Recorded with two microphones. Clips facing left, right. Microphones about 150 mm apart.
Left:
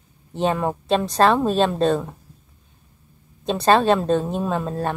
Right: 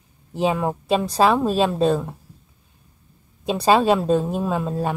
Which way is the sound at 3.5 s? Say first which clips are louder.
Even; 5° right (ahead or behind).